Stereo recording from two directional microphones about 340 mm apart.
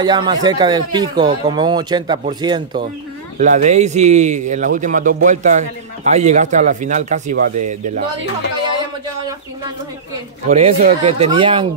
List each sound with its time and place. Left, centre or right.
0.0 s speech: centre
10.5 s speech: centre